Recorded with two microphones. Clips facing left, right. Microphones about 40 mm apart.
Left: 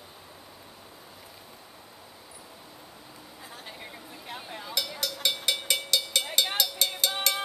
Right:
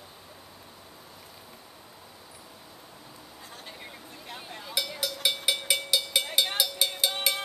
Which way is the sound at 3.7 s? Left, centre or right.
Centre.